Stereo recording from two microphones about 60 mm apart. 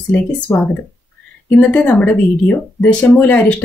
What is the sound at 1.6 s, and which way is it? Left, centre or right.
Speech, left.